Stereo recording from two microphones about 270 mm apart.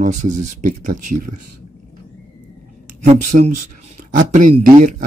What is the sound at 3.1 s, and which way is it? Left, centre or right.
Speech, right.